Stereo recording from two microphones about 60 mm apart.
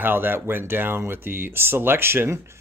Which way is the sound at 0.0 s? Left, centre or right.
Right.